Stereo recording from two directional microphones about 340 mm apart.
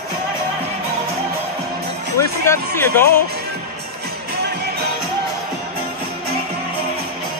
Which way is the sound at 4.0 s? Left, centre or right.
Right.